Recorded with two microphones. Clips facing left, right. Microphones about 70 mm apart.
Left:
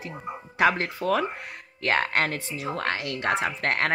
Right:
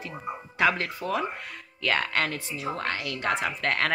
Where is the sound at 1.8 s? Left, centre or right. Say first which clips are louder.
Left 2 dB; left.